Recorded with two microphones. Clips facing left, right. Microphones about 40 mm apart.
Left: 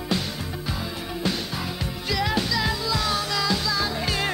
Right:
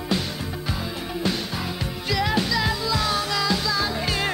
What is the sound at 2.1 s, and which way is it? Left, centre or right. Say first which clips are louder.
Music: right 2 dB; centre.